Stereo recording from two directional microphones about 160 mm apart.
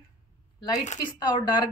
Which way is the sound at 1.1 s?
25° left (ahead or behind).